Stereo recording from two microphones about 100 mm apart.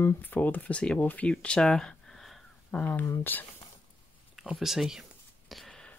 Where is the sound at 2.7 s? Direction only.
15° left (ahead or behind).